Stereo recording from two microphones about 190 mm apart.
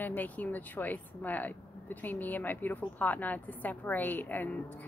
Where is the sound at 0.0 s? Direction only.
10° left (ahead or behind).